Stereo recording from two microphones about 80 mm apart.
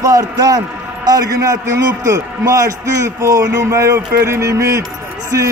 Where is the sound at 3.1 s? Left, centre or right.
Right.